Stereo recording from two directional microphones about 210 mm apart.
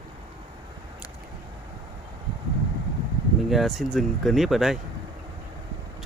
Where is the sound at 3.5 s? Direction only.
Centre (ahead or behind).